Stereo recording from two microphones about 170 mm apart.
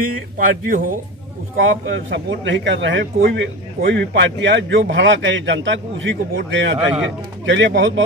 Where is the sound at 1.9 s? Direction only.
90° right.